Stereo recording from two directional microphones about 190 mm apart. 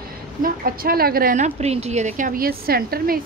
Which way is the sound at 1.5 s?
35° right (ahead or behind).